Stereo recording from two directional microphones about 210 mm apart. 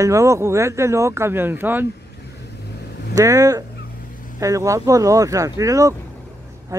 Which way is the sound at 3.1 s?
15° right (ahead or behind).